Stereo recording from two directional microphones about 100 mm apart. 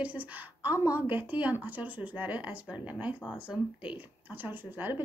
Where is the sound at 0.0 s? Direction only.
15° right (ahead or behind).